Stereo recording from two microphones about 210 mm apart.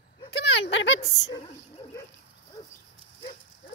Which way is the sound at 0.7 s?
60° left (ahead or behind).